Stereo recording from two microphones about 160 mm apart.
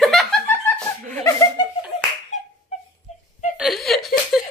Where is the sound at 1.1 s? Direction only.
20° left (ahead or behind).